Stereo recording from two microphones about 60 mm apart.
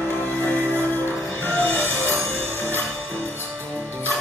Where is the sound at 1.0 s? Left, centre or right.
Left.